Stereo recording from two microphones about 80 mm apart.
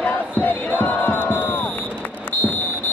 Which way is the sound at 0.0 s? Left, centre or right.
Left.